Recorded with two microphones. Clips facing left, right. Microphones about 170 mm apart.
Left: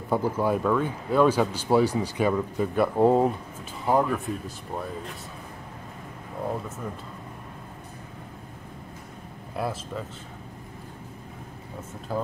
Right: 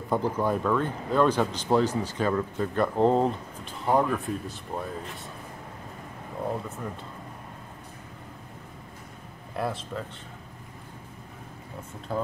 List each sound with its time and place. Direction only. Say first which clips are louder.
0.1 s speech: left 2 dB; 5° left (ahead or behind)
9.6 s speech: even; centre (ahead or behind)
12.1 s speech: even; 5° left (ahead or behind)